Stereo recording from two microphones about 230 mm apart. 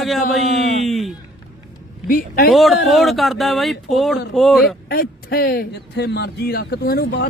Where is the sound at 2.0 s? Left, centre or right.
Left.